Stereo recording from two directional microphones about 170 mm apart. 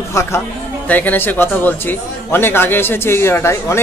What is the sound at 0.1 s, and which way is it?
A man's voice, 15° left (ahead or behind).